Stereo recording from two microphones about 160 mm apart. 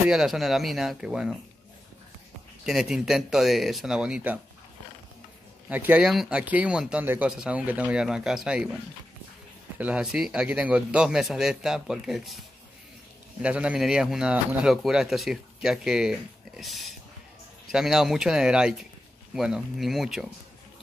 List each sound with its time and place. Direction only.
0.1 s speech: centre (ahead or behind)
2.6 s speech: 5° right (ahead or behind)
5.7 s speech: 10° right (ahead or behind)
9.8 s speech: 5° right (ahead or behind)
13.4 s speech: 5° right (ahead or behind)